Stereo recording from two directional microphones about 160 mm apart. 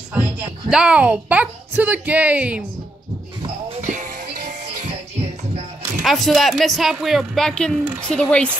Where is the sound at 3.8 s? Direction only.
55° right (ahead or behind).